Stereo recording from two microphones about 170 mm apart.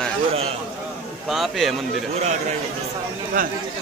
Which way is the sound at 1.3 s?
Centre (ahead or behind).